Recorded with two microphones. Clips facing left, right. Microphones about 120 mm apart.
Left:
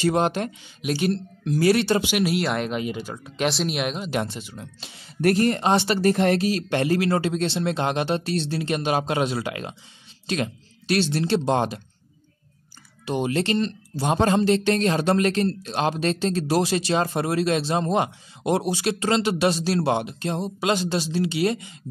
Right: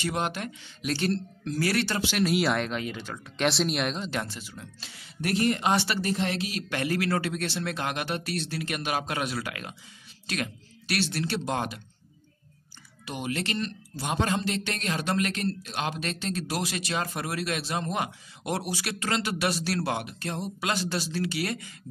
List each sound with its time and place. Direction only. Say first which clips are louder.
0.0 s speech: left 8 dB; 30° left (ahead or behind)
0.8 s speech: left 4 dB; 10° left (ahead or behind)
2.2 s speech: left 2 dB; centre (ahead or behind)
2.8 s speech: left 6 dB; 15° left (ahead or behind)
3.4 s speech: left 2 dB; centre (ahead or behind)
4.2 s speech: left 6 dB; 20° left (ahead or behind)
5.2 s speech: left 6 dB; 45° left (ahead or behind); by 5.9 s 25° left (ahead or behind)
5.9 s speech: left 9 dB; 50° left (ahead or behind); by 11.8 s 30° left (ahead or behind)
13.0 s speech: left 8 dB; 30° left (ahead or behind)